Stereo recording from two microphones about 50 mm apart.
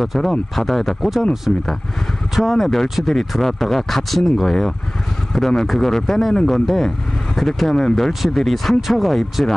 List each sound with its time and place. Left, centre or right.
0.0 s speech: centre
1.5 s speech: centre
2.3 s speech: centre
8.1 s speech: centre